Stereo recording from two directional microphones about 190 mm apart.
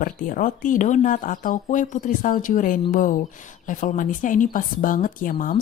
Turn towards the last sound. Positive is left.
turn(degrees=45)  # may be behind; listen again after turning